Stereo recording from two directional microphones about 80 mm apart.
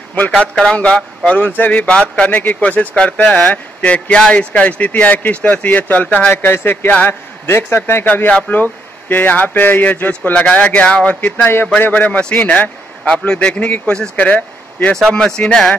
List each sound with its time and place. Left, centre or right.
0.4 s a man's voice: centre